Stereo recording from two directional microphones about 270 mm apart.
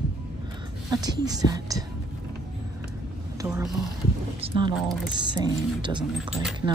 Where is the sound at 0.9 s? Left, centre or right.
Centre.